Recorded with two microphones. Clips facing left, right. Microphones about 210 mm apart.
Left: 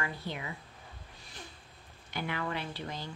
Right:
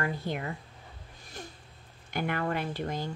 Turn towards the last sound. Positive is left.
turn(degrees=-50)  # may be behind; listen again after turning